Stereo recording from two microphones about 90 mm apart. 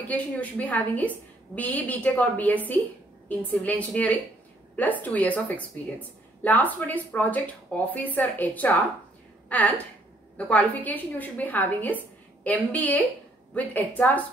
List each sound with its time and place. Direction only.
0.1 s a woman's voice: 15° left (ahead or behind)